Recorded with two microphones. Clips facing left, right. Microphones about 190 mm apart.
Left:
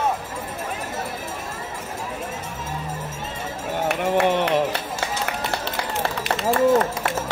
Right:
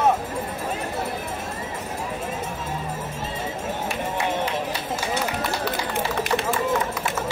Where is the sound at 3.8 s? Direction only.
65° left (ahead or behind).